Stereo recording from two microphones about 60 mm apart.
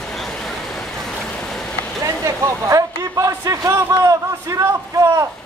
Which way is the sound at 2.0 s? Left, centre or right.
Right.